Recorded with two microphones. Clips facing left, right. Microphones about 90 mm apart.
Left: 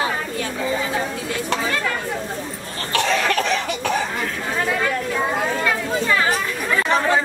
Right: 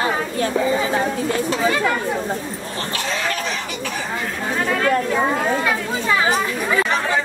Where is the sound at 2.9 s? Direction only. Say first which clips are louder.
Left 6 dB; 65° left (ahead or behind).